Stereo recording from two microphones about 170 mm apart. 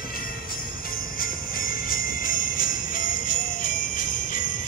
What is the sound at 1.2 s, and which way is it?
Jingle bell, 55° left (ahead or behind).